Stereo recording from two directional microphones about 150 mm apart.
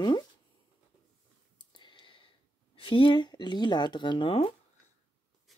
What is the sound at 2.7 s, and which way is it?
Speech, 35° left (ahead or behind).